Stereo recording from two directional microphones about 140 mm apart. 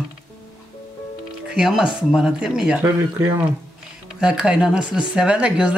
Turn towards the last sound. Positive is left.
turn(degrees=-5)  # may be behind; listen again after turning